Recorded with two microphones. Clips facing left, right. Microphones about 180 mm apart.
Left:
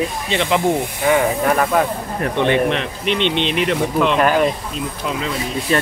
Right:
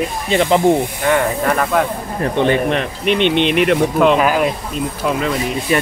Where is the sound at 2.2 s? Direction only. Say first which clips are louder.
Right 1 dB; 35° right (ahead or behind); by 4.2 s 50° right (ahead or behind).